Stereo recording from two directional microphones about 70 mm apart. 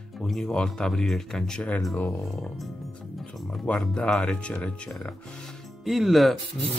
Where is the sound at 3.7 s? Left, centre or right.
Centre.